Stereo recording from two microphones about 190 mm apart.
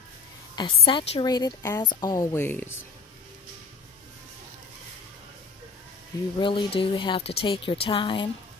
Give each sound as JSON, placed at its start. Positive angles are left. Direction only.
{"t": 0.6, "sound": "a woman's voice", "side_deg": 25}
{"t": 6.4, "sound": "a woman's voice", "side_deg": 25}